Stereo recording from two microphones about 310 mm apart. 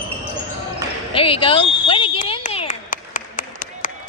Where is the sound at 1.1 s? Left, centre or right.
Centre.